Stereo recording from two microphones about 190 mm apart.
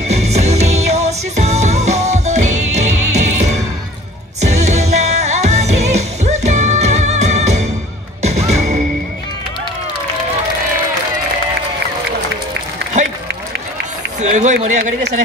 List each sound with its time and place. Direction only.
0.1 s music: 35° right (ahead or behind)
14.2 s speech: 40° right (ahead or behind)